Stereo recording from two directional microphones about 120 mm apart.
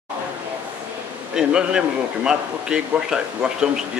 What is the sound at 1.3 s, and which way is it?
A man's voice, 5° right (ahead or behind).